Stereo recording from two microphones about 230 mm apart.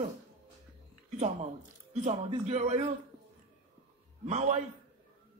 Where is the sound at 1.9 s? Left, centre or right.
Right.